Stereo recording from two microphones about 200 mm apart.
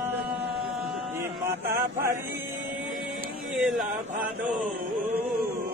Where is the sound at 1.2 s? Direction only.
15° right (ahead or behind).